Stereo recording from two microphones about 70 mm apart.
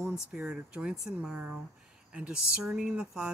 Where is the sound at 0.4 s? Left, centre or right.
Centre.